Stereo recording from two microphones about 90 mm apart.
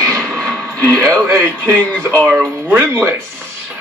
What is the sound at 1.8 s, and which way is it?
Speech, 10° left (ahead or behind).